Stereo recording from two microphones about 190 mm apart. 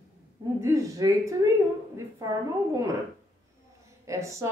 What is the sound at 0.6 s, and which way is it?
Speech, 15° right (ahead or behind).